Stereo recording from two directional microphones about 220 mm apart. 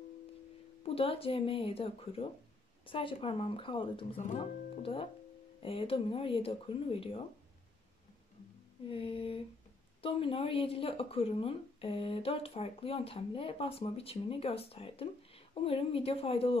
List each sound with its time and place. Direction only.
0.8 s speech: 25° left (ahead or behind)
8.8 s speech: 25° left (ahead or behind)